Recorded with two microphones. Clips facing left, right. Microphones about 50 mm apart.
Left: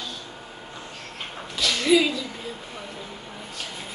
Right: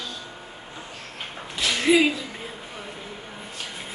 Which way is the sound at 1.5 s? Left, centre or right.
Right.